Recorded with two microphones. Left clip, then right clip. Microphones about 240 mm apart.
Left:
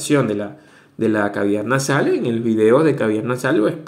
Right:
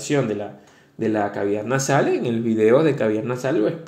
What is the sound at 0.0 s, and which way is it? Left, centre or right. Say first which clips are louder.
Speech: left 4 dB; centre.